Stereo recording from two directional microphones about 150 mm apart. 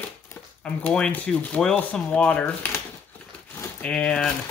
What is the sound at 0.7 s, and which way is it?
Speech, 5° left (ahead or behind).